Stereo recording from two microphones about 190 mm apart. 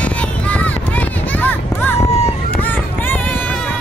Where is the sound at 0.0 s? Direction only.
5° left (ahead or behind).